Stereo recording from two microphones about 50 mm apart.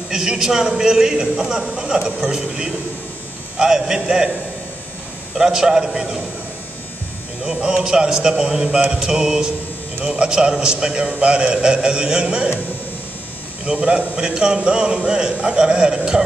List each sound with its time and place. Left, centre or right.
0.1 s a man's voice: centre
5.3 s a man's voice: centre
7.4 s a man's voice: centre
13.7 s a man's voice: right